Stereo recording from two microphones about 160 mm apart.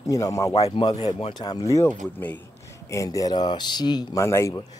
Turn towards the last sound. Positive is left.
turn(degrees=15)  # may be behind; listen again after turning